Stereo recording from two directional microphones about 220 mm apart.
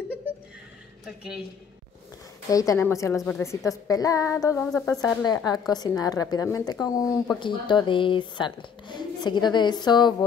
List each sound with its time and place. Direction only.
1.0 s a woman's voice: centre (ahead or behind)
2.5 s a woman's voice: 15° left (ahead or behind)